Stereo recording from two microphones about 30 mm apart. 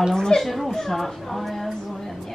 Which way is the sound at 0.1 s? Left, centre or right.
Left.